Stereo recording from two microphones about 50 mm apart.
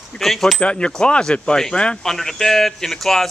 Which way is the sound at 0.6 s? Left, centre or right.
Left.